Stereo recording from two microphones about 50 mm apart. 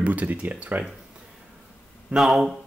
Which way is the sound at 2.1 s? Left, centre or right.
Centre.